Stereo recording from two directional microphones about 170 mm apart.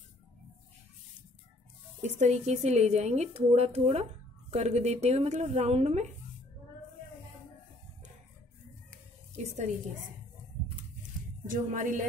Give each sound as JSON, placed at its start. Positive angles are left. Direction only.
{"t": 2.0, "sound": "speech", "side_deg": -45}
{"t": 11.4, "sound": "music", "side_deg": -50}